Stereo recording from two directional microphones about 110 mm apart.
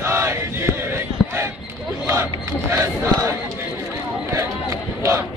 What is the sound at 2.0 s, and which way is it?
Speech, 25° right (ahead or behind).